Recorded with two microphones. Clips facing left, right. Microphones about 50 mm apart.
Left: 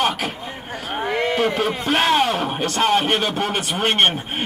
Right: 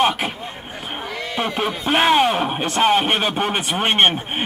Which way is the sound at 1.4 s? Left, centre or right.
Right.